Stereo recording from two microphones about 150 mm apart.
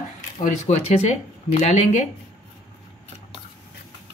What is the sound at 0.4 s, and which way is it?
Speech, 50° left (ahead or behind).